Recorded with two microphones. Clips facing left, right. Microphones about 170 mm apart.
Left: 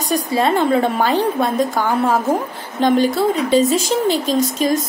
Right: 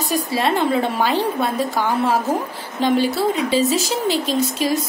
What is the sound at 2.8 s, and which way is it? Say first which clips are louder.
A woman's voice: left 3 dB; 45° left (ahead or behind).